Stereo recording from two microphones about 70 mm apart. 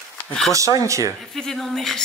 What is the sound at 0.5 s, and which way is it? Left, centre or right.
Speech, right.